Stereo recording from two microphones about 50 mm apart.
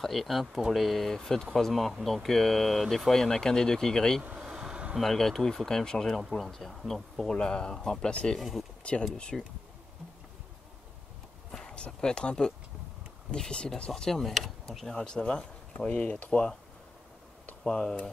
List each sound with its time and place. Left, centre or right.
0.0 s speech: centre
4.4 s a sound: centre
4.9 s speech: centre
7.2 s speech: centre
8.4 s speech: centre
9.1 s speech: centre
11.5 s speech: centre
13.7 s speech: centre
14.1 s speech: centre
17.6 s speech: centre